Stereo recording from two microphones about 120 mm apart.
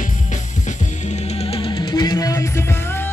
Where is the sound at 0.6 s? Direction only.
70° left (ahead or behind); by 3.0 s 20° left (ahead or behind).